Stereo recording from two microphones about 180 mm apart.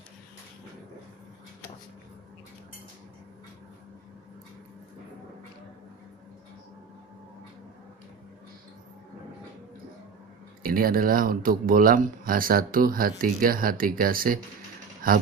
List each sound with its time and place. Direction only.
10.6 s speech: 55° right (ahead or behind)